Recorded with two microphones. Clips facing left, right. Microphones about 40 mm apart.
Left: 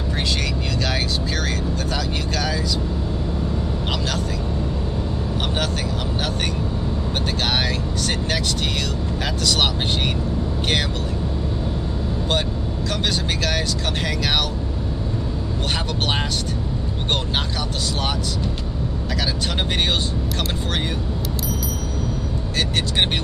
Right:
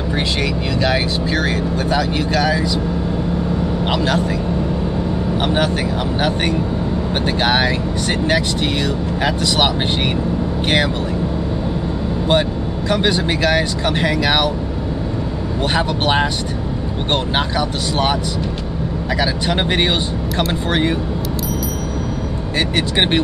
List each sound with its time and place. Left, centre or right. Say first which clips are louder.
0.1 s speech: right 4 dB; right
3.8 s speech: right 9 dB; right
5.4 s speech: right 7 dB; centre
7.2 s speech: right 7 dB; right
12.3 s speech: right 8 dB; right
15.7 s speech: right 7 dB; centre
19.1 s speech: right 6 dB; right
22.6 s speech: right 4 dB; right